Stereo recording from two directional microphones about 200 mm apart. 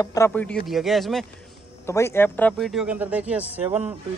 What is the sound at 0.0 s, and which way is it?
Speech, 15° left (ahead or behind).